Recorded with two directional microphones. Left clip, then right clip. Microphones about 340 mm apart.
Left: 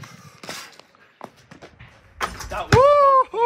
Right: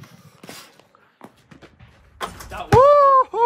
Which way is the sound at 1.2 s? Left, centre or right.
Centre.